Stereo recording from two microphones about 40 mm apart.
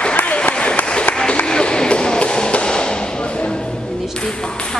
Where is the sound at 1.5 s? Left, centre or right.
Left.